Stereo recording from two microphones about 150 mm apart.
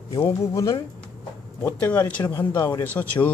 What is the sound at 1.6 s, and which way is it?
Speech, 10° left (ahead or behind).